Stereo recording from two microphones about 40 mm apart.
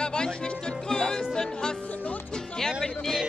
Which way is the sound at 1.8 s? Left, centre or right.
Left.